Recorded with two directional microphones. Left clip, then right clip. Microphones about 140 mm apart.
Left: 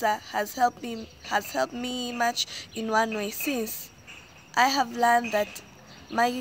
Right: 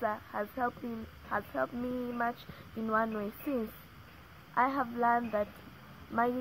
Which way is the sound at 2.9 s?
10° left (ahead or behind).